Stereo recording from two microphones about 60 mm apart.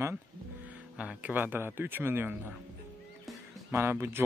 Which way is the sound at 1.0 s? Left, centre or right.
Right.